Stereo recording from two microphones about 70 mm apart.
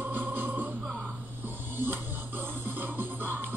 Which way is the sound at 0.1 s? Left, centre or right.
Right.